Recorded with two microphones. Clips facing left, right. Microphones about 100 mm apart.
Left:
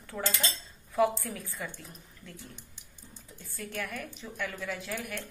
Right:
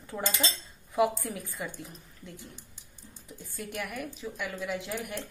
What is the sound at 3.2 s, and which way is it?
A woman's voice, 15° right (ahead or behind).